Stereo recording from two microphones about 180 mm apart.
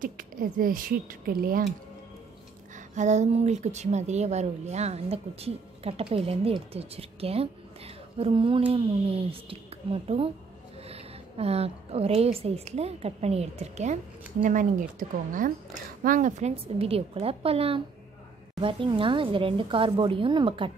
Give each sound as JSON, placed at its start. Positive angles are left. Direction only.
{"t": 0.0, "sound": "speech", "side_deg": -50}
{"t": 2.9, "sound": "a woman's voice", "side_deg": -40}